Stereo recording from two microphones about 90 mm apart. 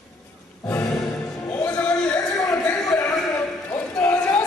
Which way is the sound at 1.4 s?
15° left (ahead or behind).